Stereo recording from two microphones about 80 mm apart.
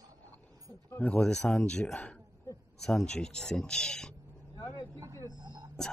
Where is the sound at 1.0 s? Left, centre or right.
Centre.